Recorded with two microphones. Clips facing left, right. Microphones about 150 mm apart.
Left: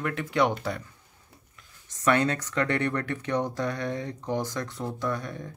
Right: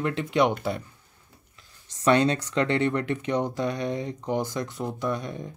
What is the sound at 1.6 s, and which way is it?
Speech, 20° right (ahead or behind).